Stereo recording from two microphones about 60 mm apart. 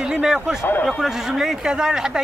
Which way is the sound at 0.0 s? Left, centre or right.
Centre.